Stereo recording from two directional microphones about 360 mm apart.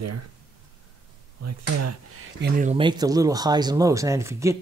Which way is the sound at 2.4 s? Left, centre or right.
Right.